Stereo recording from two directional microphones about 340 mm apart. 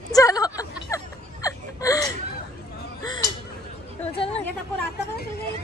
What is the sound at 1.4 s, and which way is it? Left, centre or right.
Whimper, centre.